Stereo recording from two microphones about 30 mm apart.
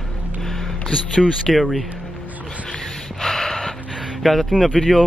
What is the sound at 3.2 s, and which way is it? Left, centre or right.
Gasp, centre.